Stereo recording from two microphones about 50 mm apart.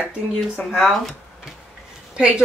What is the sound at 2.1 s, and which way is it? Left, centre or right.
Speech, centre.